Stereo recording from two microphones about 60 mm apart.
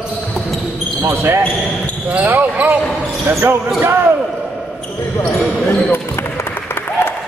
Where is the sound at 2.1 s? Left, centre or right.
Right.